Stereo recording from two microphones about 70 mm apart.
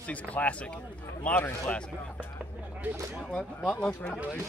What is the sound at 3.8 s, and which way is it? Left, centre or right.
Speech, centre.